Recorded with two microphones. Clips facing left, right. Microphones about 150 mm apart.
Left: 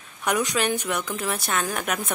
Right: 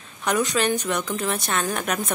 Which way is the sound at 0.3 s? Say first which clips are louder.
Right 2 dB; 10° left (ahead or behind).